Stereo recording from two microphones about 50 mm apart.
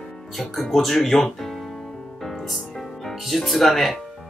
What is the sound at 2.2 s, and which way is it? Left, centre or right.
Music, centre.